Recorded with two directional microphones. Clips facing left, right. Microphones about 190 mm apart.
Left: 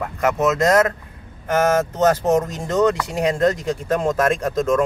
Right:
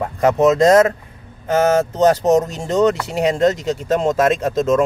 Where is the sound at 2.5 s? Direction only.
25° right (ahead or behind).